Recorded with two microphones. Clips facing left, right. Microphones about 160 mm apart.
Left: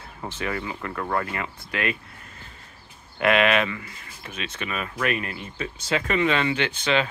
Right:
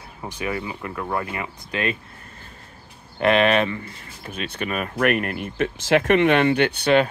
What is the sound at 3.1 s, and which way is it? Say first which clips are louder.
Speech: right 3 dB; 30° right (ahead or behind).